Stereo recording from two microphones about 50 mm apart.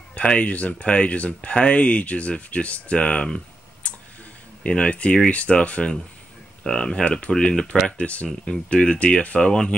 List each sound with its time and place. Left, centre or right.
0.1 s speech: left
3.8 s a sound: left
4.6 s speech: left